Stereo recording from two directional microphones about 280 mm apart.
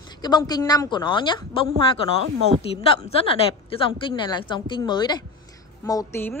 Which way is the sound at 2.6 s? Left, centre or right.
Left.